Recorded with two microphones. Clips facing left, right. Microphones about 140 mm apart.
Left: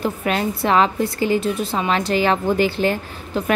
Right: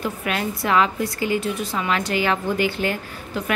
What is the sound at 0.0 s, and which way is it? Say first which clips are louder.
A woman's voice: left 4 dB; 30° left (ahead or behind).